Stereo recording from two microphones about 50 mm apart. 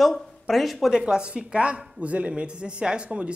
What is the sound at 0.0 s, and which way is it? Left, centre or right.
Speech, centre.